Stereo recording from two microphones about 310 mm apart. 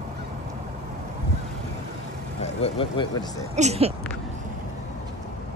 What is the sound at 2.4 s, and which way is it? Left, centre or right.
Speech, centre.